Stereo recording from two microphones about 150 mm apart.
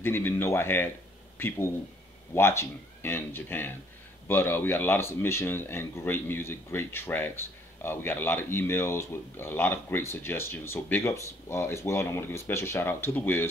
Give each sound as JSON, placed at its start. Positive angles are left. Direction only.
{"t": 0.0, "sound": "speech", "side_deg": 15}
{"t": 2.3, "sound": "speech", "side_deg": 15}